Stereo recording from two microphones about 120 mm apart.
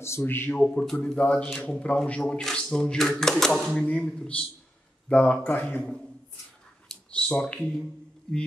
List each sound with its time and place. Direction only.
0.0 s a man's voice: 20° left (ahead or behind)
0.6 s a man's voice: 5° left (ahead or behind)
6.9 s finger snapping: 5° left (ahead or behind)